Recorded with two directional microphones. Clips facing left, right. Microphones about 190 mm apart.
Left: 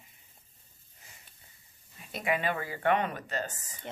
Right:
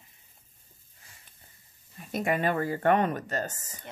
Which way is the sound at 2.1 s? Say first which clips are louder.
Right 4 dB; 45° right (ahead or behind).